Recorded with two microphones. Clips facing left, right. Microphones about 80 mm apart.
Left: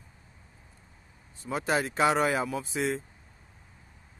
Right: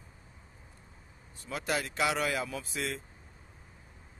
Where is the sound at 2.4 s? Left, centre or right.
Centre.